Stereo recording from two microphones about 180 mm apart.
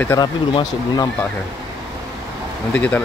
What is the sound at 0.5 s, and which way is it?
Speech, 25° left (ahead or behind).